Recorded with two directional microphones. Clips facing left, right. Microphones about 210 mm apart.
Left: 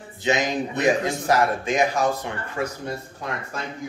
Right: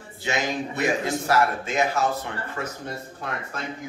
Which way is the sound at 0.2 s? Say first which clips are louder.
Left 4 dB; 20° left (ahead or behind).